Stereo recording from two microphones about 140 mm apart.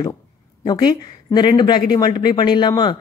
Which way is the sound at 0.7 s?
30° left (ahead or behind).